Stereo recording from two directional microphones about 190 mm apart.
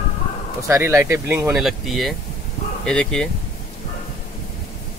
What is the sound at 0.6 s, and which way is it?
Speech, 15° right (ahead or behind).